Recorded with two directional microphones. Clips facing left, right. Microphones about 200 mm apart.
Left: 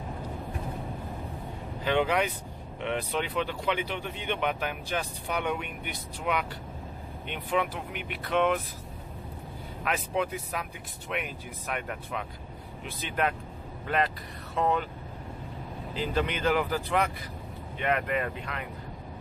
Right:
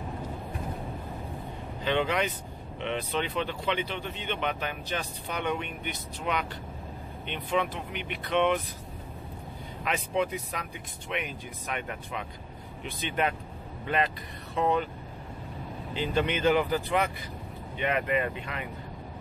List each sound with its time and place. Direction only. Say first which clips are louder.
1.9 s speech: left 1 dB; 10° left (ahead or behind)
9.8 s speech: right 1 dB; 5° left (ahead or behind)
15.9 s speech: right 1 dB; centre (ahead or behind)